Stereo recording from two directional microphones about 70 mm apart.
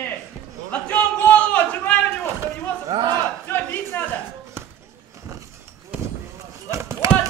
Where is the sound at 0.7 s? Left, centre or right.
Centre.